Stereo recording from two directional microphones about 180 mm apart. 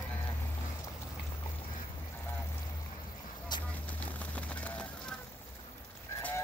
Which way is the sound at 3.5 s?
25° left (ahead or behind).